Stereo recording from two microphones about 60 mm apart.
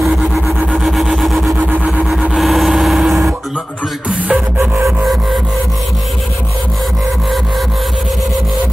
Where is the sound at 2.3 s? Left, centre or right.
Centre.